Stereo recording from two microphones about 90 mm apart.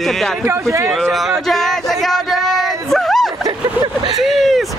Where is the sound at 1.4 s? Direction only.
5° left (ahead or behind).